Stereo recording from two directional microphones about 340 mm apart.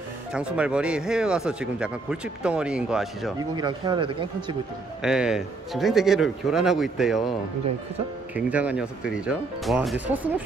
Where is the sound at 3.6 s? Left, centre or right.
Centre.